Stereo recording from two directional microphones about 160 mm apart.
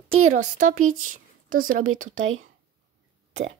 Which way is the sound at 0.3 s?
50° right (ahead or behind).